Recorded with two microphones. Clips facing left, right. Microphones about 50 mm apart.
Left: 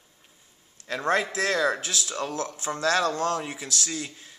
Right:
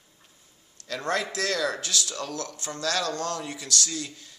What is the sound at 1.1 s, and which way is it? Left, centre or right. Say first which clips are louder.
Speech: left 3 dB; left.